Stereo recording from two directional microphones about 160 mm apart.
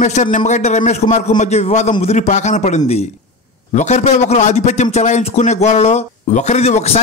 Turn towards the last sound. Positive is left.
turn(degrees=40)  # may be behind; listen again after turning